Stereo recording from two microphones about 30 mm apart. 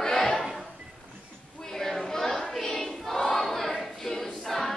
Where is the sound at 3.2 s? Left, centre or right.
Centre.